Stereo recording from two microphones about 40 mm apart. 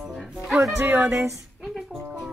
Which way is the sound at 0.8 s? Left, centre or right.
Right.